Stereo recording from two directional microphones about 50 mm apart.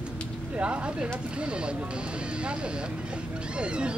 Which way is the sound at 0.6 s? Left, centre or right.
Right.